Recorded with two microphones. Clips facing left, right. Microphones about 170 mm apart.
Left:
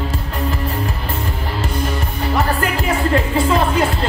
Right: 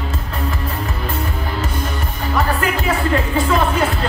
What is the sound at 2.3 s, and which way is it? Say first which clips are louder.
Music: even; 35° left (ahead or behind).